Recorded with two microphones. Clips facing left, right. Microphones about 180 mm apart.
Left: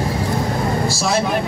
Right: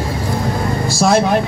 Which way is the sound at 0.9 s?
50° right (ahead or behind).